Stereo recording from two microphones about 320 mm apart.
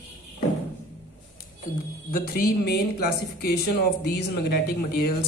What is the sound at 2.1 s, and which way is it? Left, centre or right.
Speech, left.